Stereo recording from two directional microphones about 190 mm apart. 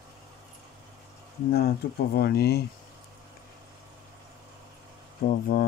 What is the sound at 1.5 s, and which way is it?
Speech, 55° left (ahead or behind).